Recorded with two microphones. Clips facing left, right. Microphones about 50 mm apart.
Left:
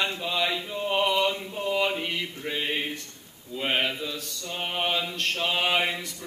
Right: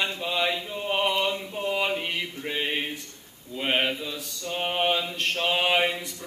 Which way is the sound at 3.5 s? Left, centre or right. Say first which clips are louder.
Right 1 dB; centre.